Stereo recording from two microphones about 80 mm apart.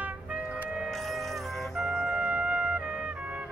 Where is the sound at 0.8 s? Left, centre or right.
Centre.